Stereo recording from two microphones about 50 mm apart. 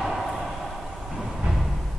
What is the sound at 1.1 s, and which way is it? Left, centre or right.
Music, centre.